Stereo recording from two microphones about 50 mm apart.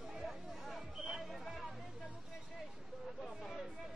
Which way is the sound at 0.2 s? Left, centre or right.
Centre.